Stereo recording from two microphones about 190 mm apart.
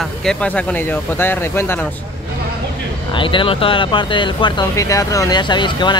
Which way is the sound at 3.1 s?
25° left (ahead or behind).